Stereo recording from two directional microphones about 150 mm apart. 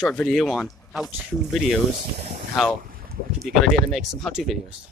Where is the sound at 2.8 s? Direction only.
70° right (ahead or behind).